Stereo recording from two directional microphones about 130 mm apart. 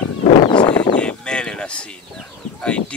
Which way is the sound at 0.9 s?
5° left (ahead or behind).